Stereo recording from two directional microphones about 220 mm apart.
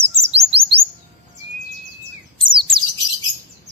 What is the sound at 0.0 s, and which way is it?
Chirp, 30° right (ahead or behind).